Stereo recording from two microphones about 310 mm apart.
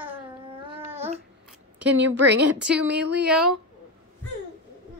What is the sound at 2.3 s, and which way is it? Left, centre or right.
Speech, right.